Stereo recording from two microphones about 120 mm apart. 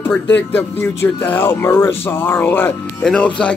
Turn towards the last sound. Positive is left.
turn(degrees=10)  # may be behind; listen again after turning